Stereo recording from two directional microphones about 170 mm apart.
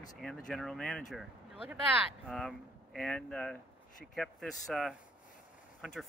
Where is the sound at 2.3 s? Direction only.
5° left (ahead or behind).